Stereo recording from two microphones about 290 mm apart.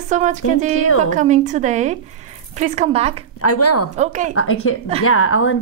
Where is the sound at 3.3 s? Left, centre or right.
Left.